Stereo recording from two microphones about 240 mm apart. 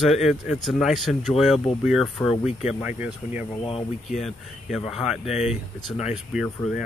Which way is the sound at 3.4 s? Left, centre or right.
Left.